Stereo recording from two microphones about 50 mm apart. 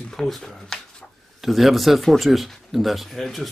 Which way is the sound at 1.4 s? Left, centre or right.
Centre.